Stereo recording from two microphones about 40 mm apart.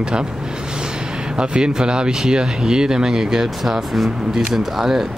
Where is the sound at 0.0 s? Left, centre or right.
Right.